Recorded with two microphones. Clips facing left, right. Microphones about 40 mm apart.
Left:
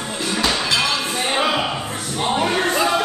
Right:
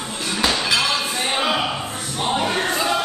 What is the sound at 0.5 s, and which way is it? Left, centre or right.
Music, centre.